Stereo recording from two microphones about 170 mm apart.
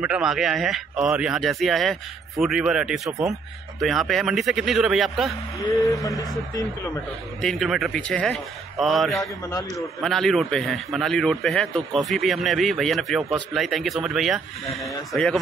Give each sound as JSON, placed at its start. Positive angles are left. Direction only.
{"t": 0.0, "sound": "a man's voice", "side_deg": -5}
{"t": 5.8, "sound": "speech", "side_deg": 20}
{"t": 7.4, "sound": "a man's voice", "side_deg": 0}